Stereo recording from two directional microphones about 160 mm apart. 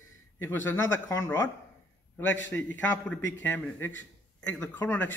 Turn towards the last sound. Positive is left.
turn(degrees=15)  # may be behind; listen again after turning